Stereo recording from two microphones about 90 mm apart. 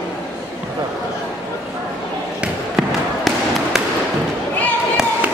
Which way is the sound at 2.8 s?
Centre (ahead or behind).